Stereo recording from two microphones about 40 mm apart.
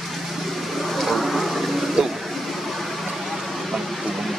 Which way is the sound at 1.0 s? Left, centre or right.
Centre.